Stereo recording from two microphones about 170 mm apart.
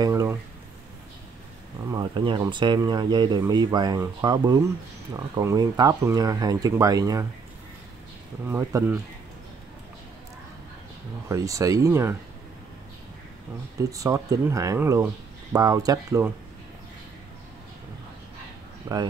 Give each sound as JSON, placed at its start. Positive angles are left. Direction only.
{"t": 0.0, "sound": "a sound", "side_deg": -20}
{"t": 1.9, "sound": "speech", "side_deg": -25}
{"t": 8.5, "sound": "speech", "side_deg": -15}
{"t": 11.2, "sound": "speech", "side_deg": -20}
{"t": 13.7, "sound": "speech", "side_deg": -20}
{"t": 18.9, "sound": "speech", "side_deg": -15}